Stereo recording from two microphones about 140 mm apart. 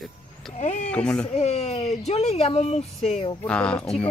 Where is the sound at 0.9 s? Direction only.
5° left (ahead or behind).